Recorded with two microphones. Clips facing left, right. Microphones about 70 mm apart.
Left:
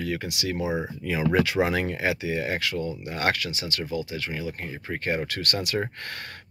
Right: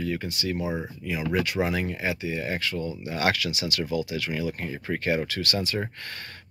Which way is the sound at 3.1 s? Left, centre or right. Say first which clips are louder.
Right 1 dB; left.